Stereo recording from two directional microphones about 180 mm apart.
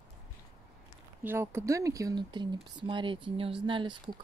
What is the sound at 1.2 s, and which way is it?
Speech, 10° right (ahead or behind).